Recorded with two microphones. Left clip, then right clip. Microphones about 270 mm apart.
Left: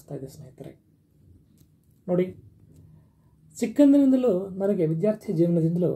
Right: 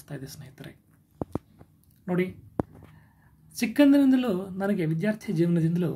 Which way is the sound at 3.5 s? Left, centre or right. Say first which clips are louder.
Left 2 dB; right.